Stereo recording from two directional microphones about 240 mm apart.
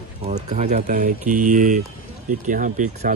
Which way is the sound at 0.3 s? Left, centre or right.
Right.